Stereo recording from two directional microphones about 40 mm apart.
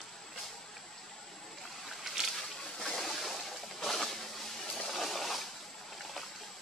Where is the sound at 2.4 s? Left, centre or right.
Centre.